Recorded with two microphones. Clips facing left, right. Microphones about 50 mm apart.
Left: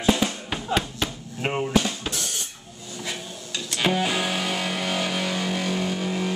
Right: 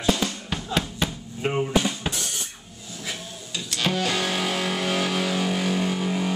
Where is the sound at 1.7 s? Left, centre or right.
Centre.